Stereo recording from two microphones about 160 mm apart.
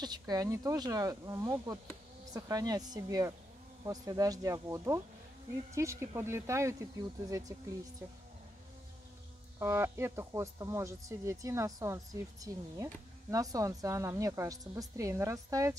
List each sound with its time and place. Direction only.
0.0 s speech: 25° right (ahead or behind)
9.6 s speech: 15° right (ahead or behind)